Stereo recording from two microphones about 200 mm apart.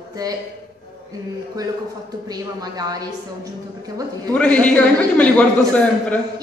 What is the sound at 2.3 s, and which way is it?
Speech, 20° right (ahead or behind).